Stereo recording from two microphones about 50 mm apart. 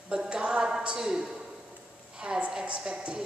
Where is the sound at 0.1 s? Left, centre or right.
Centre.